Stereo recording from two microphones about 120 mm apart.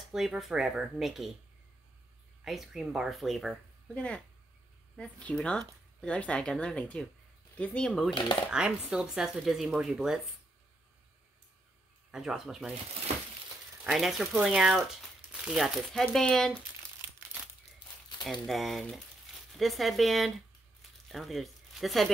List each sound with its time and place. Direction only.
0.1 s speech: 5° right (ahead or behind)
2.4 s speech: centre (ahead or behind)
8.1 s speech: 40° left (ahead or behind)
8.5 s speech: 5° right (ahead or behind)
12.1 s speech: 5° right (ahead or behind)
13.8 s speech: 5° right (ahead or behind)
18.2 s speech: centre (ahead or behind)